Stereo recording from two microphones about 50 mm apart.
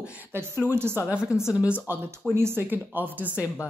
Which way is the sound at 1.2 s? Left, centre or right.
Left.